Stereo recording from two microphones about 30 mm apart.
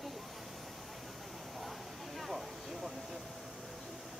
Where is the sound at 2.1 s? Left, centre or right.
Centre.